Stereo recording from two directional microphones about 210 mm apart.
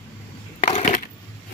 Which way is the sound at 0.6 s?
30° left (ahead or behind).